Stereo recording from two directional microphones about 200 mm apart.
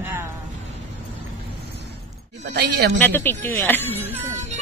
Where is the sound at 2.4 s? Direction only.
55° right (ahead or behind).